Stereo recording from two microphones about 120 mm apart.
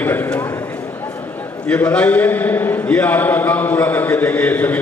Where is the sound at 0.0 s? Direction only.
15° left (ahead or behind).